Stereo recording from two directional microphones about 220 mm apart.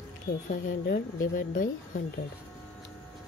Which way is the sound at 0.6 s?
45° left (ahead or behind).